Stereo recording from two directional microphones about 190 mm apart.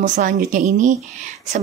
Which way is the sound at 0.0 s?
40° right (ahead or behind).